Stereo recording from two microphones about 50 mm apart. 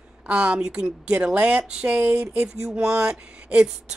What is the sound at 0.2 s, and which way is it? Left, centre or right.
A woman's voice, right.